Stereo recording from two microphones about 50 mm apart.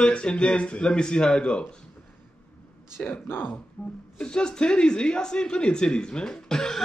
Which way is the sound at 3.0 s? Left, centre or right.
Left.